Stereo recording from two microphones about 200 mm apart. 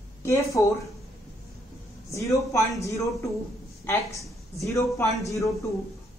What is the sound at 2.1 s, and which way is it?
A woman's voice, 15° left (ahead or behind).